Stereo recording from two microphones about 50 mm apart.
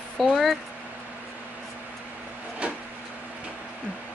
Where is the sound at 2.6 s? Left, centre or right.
Right.